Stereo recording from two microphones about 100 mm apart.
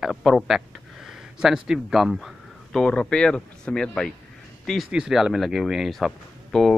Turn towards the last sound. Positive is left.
turn(degrees=0)  # may be behind; listen again after turning